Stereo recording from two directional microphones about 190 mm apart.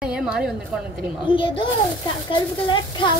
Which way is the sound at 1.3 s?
25° left (ahead or behind).